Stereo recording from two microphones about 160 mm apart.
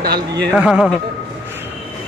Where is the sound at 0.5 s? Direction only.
5° right (ahead or behind).